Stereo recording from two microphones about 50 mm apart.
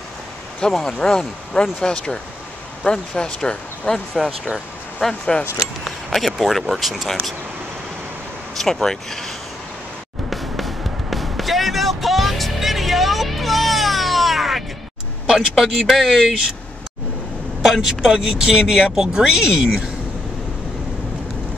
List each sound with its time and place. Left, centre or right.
0.6 s speech: centre
5.6 s speech: centre
8.5 s speech: centre
10.3 s music: centre
15.2 s speech: centre
17.6 s speech: centre